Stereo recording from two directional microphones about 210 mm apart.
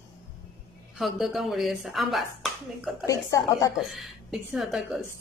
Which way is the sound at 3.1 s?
15° left (ahead or behind).